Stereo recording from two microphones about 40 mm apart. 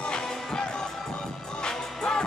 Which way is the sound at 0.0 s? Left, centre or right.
Centre.